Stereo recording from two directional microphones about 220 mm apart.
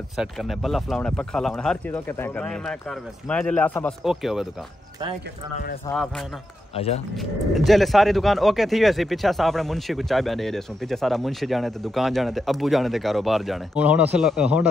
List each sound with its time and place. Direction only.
0.2 s speech: centre (ahead or behind)
5.9 s speech: 15° left (ahead or behind)
6.7 s speech: 25° left (ahead or behind)
7.2 s speech: centre (ahead or behind)